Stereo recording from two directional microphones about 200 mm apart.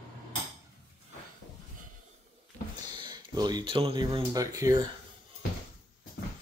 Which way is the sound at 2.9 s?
20° right (ahead or behind).